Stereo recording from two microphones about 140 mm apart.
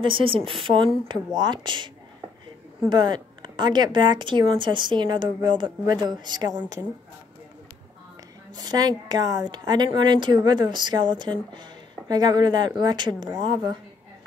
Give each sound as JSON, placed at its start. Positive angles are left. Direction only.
{"t": 0.0, "sound": "a woman's voice", "side_deg": -40}
{"t": 2.9, "sound": "a woman's voice", "side_deg": -30}
{"t": 8.5, "sound": "a woman's voice", "side_deg": -30}